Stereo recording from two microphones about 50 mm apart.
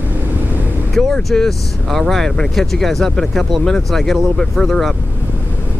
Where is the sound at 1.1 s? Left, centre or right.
Centre.